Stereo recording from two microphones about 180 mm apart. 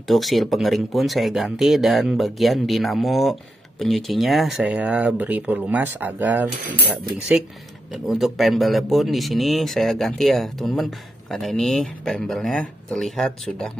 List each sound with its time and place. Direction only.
0.1 s speech: centre (ahead or behind)
7.9 s speech: centre (ahead or behind)